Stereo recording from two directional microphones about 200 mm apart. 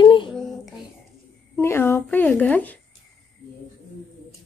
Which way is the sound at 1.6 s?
10° left (ahead or behind).